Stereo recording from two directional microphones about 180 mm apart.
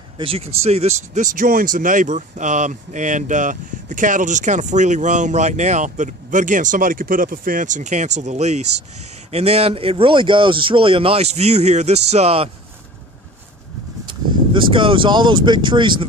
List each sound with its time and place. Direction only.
0.2 s speech: 35° right (ahead or behind)
14.0 s speech: 30° right (ahead or behind)